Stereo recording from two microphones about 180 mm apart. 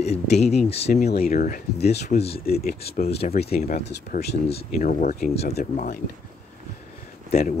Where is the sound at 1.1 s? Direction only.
55° left (ahead or behind); by 2.4 s 35° left (ahead or behind).